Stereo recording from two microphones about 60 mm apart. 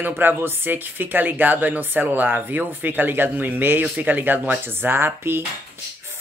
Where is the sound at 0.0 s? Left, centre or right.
Right.